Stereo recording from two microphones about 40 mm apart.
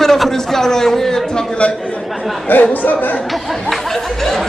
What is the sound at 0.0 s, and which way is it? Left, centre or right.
A man's voice, centre.